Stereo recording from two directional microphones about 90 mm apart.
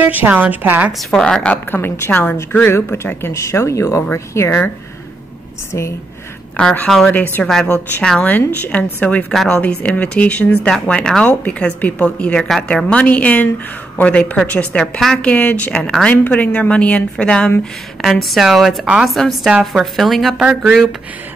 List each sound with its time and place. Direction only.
0.0 s a woman's voice: 20° right (ahead or behind)
1.1 s a woman's voice: 10° left (ahead or behind); by 4.6 s 30° left (ahead or behind)
5.7 s a woman's voice: 30° left (ahead or behind)
6.5 s a woman's voice: 15° left (ahead or behind)
9.3 s a woman's voice: 5° left (ahead or behind)
9.6 s a woman's voice: 15° left (ahead or behind)
18.0 s a woman's voice: centre (ahead or behind)
19.1 s a woman's voice: 5° left (ahead or behind)
20.3 s speech: 15° right (ahead or behind)